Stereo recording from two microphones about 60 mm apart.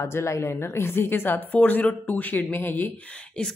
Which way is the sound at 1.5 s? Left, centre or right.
Left.